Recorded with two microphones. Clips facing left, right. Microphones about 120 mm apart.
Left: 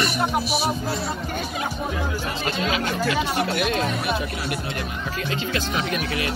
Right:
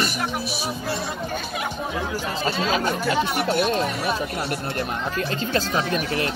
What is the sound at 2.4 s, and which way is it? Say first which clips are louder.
A man's voice: right 3 dB; 40° right (ahead or behind).